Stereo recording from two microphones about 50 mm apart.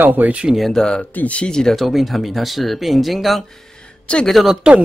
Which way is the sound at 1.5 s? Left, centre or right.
Centre.